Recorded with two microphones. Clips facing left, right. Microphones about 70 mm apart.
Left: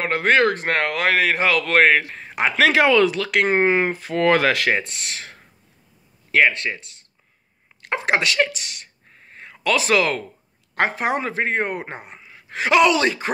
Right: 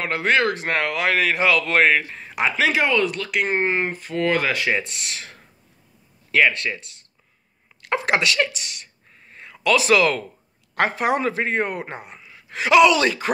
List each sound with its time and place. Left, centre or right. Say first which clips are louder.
0.0 s speech: left 3 dB; left
2.2 s a sound: left 1 dB; left
2.5 s speech: left 5 dB; left
4.7 s speech: even; left
7.8 s a sound: even; left
10.8 s speech: right 1 dB; left